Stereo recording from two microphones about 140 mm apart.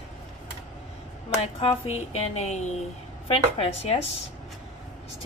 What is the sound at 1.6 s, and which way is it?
A woman's voice, 45° left (ahead or behind).